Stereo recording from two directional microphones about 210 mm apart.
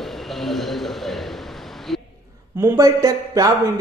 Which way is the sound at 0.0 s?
Centre (ahead or behind).